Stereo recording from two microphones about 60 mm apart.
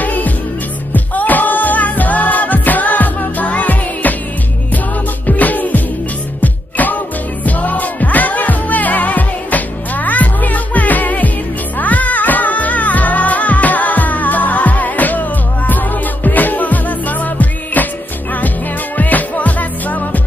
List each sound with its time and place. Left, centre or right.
0.0 s music: left
5.2 s music: left
18.9 s music: left